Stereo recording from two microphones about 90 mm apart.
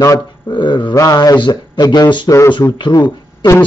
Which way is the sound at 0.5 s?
60° left (ahead or behind).